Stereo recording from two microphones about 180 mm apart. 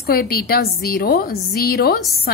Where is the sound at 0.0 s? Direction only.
55° left (ahead or behind).